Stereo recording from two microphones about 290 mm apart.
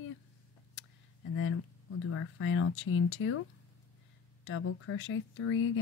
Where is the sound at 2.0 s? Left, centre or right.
Left.